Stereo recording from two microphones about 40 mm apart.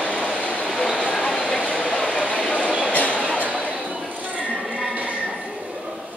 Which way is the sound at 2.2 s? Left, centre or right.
Left.